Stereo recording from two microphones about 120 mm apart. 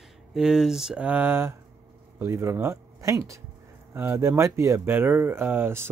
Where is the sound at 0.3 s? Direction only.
5° right (ahead or behind).